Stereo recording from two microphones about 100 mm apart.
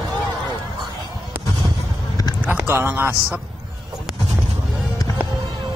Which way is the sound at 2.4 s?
15° right (ahead or behind).